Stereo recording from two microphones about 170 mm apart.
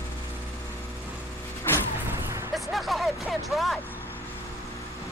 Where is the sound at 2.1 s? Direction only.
15° right (ahead or behind).